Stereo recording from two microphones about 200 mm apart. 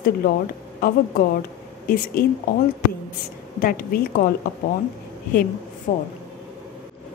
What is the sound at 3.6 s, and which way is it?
A woman's voice, 45° left (ahead or behind).